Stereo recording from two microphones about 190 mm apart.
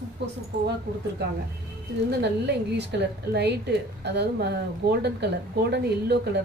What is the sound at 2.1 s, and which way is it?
A woman's voice, 60° right (ahead or behind).